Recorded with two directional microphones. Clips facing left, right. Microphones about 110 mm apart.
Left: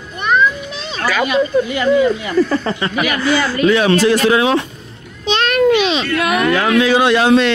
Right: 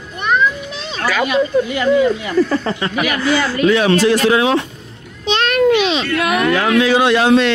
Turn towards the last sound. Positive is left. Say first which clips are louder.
# even
turn(degrees=15)  # may be behind; listen again after turning